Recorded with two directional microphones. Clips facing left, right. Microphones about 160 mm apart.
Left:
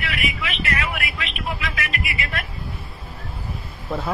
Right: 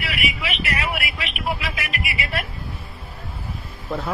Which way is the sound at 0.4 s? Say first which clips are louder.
Even; 35° right (ahead or behind).